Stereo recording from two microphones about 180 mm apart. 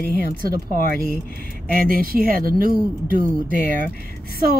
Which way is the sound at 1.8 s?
55° right (ahead or behind).